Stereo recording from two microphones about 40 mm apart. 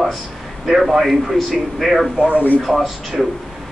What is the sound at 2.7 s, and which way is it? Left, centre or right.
Speech, centre.